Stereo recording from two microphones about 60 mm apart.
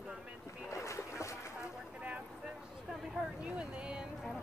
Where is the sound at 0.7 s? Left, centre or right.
Left.